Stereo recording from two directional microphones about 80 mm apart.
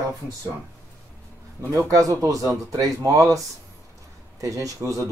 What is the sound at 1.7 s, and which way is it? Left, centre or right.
Speech, right.